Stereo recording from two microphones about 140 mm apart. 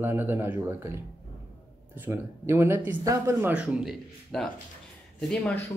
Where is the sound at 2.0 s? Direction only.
15° right (ahead or behind).